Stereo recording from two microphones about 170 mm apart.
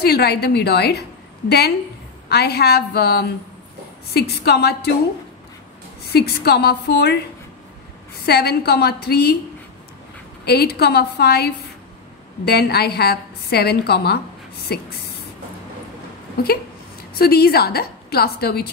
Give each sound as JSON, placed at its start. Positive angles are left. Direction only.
{"t": 0.0, "sound": "a woman's voice", "side_deg": 70}
{"t": 2.2, "sound": "a woman's voice", "side_deg": 70}
{"t": 6.0, "sound": "a woman's voice", "side_deg": 70}
{"t": 8.3, "sound": "a woman's voice", "side_deg": 70}
{"t": 10.4, "sound": "a woman's voice", "side_deg": 70}
{"t": 17.2, "sound": "a woman's voice", "side_deg": 65}